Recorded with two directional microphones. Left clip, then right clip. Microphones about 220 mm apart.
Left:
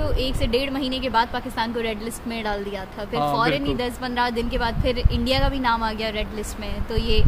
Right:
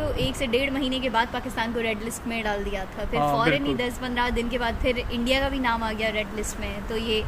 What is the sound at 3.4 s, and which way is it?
Speech, 30° left (ahead or behind).